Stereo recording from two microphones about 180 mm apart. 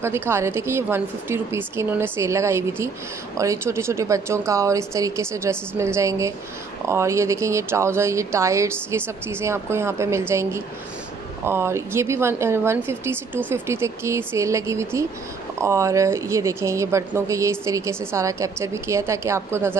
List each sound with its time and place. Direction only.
0.0 s speech: 15° right (ahead or behind)